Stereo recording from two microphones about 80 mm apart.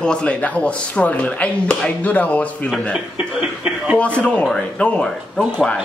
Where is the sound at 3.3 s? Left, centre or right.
Centre.